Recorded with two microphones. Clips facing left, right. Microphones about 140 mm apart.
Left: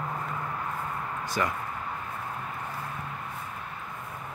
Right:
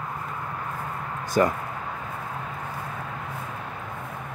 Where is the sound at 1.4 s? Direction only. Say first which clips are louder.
Right 9 dB; 40° right (ahead or behind).